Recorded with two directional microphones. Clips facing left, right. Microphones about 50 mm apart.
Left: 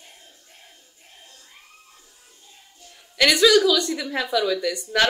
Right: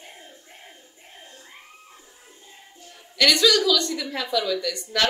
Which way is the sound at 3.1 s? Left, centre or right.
Centre.